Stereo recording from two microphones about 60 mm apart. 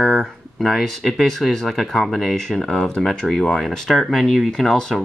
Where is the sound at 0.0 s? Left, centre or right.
Centre.